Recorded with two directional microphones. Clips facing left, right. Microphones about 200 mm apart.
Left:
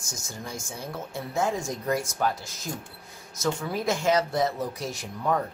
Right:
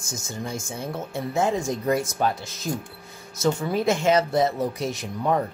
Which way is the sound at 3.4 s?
25° right (ahead or behind).